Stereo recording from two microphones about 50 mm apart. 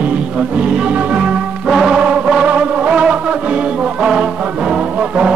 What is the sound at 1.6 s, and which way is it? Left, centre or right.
Music, centre.